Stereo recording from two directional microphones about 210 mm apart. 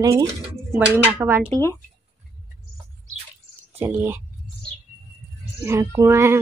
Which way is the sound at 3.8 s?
10° right (ahead or behind).